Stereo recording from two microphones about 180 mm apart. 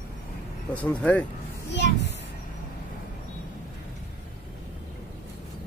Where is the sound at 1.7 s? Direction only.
70° left (ahead or behind).